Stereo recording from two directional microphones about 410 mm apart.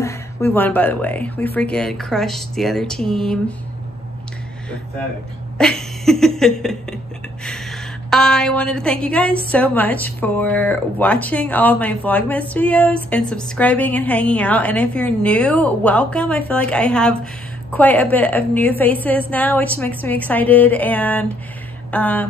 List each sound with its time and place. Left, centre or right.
0.0 s speech: centre
5.6 s a woman's voice: centre